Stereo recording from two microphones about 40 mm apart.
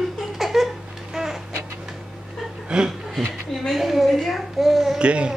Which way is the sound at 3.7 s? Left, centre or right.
Centre.